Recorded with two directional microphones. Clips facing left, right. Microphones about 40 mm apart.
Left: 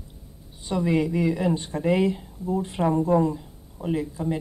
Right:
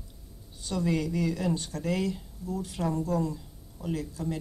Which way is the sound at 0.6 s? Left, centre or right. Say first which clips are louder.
Left 6 dB; left.